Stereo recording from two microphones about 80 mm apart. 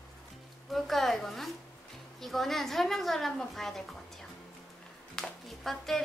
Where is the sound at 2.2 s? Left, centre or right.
Centre.